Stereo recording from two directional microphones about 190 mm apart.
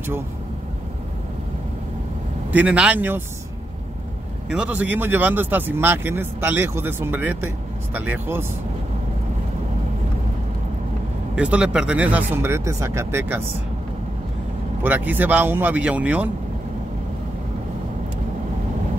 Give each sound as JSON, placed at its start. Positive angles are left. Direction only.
{"t": 2.5, "sound": "speech", "side_deg": -5}
{"t": 4.5, "sound": "speech", "side_deg": -5}
{"t": 11.3, "sound": "speech", "side_deg": -5}
{"t": 14.8, "sound": "speech", "side_deg": -10}